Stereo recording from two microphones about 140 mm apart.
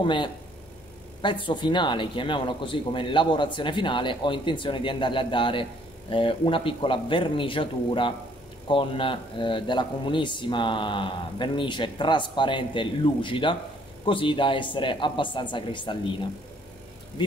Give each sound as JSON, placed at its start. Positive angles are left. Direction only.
{"t": 0.0, "sound": "speech", "side_deg": 35}